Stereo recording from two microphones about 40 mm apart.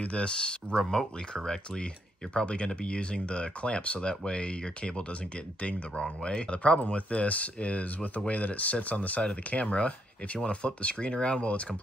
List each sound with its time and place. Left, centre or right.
0.0 s speech: left
2.3 s speech: left
4.1 s speech: centre
6.5 s speech: left